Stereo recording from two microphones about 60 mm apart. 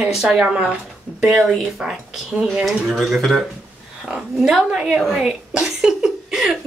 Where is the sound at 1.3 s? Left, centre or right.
Centre.